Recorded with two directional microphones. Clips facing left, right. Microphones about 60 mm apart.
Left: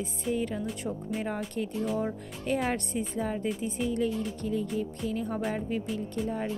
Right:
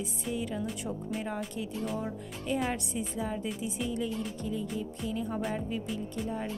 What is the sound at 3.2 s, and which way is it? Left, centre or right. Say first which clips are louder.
Speech: left 3 dB; left.